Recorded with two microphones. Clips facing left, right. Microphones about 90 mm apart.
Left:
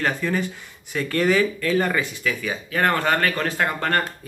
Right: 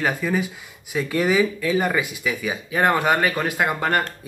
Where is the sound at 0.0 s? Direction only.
5° right (ahead or behind).